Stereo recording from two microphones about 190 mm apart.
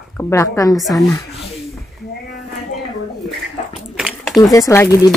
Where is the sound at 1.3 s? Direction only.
30° left (ahead or behind).